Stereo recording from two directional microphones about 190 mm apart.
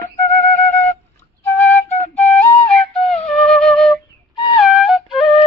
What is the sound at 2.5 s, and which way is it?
Flute, 30° left (ahead or behind).